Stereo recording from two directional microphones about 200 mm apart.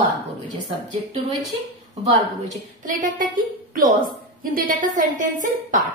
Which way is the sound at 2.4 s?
40° right (ahead or behind).